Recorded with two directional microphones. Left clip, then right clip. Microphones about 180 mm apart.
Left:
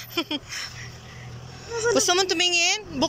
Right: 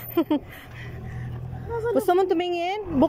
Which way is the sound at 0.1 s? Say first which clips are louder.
Right 4 dB; 35° right (ahead or behind).